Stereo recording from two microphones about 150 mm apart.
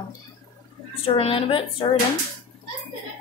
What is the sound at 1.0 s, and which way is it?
Speech, 40° left (ahead or behind).